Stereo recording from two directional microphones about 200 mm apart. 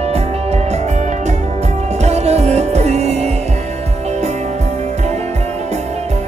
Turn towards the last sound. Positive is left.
turn(degrees=-35)  # may be behind; listen again after turning